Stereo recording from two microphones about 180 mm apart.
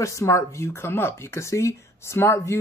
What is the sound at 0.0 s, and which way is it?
Speech, 15° left (ahead or behind).